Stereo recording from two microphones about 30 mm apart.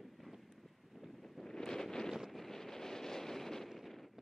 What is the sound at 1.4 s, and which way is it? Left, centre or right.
Wind noise, left.